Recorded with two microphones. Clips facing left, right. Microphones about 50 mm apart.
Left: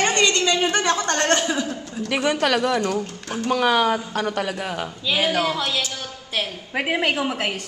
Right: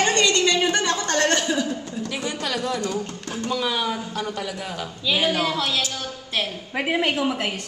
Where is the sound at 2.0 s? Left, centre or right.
Left.